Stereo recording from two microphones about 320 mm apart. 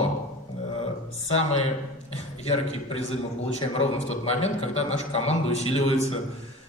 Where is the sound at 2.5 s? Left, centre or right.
Centre.